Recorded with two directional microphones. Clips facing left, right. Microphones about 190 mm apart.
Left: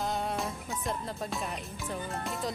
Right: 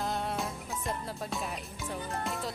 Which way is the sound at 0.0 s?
Centre (ahead or behind).